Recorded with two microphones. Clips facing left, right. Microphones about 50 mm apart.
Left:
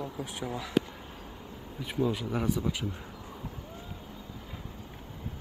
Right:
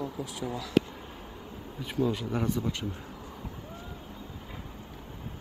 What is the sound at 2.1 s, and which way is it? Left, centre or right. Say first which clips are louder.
Speech: even; centre.